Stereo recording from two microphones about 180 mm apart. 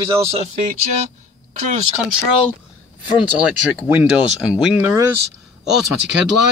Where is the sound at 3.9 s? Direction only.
5° right (ahead or behind).